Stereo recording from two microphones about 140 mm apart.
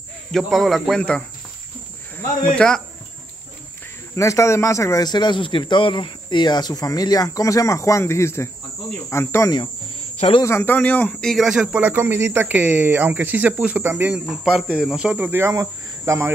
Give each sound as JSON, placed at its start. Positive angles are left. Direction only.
{"t": 0.3, "sound": "speech", "side_deg": 0}
{"t": 2.4, "sound": "speech", "side_deg": 5}
{"t": 4.1, "sound": "speech", "side_deg": 20}
{"t": 9.1, "sound": "cricket", "side_deg": 20}
{"t": 10.4, "sound": "speech", "side_deg": 15}
{"t": 14.1, "sound": "speech", "side_deg": -5}